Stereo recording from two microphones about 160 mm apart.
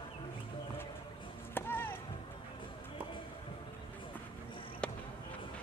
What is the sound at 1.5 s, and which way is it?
Chop, 15° left (ahead or behind).